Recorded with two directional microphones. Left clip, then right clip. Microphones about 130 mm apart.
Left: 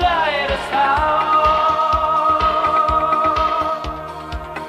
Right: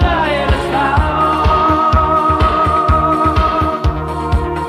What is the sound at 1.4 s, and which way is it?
Music, 35° right (ahead or behind).